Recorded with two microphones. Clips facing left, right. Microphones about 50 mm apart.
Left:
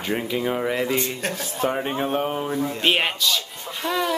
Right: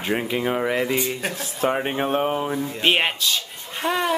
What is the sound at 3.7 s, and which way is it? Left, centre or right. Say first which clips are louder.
Speech: right 2 dB; right.